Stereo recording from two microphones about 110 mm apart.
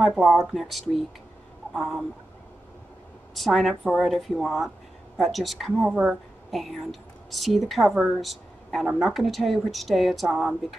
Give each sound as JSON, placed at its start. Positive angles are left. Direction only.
{"t": 0.1, "sound": "a woman's voice", "side_deg": 0}
{"t": 3.3, "sound": "a woman's voice", "side_deg": 0}